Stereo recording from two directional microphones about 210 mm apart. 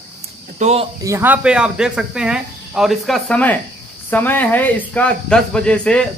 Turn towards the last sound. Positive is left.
turn(degrees=5)  # may be behind; listen again after turning